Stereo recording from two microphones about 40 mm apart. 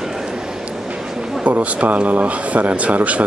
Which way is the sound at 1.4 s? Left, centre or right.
Right.